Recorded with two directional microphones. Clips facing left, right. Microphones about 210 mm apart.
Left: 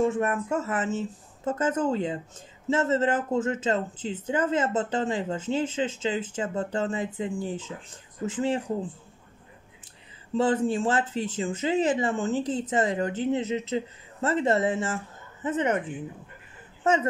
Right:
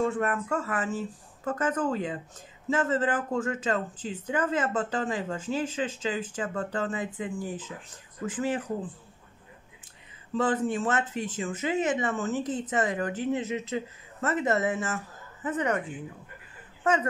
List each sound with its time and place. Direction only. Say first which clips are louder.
0.0 s speech: left 3 dB; 20° left (ahead or behind)
10.3 s speech: left 3 dB; 30° left (ahead or behind)
16.8 s speech: left 2 dB; 25° left (ahead or behind)